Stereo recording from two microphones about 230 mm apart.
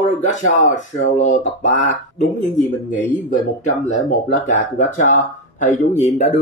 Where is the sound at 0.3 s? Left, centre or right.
Left.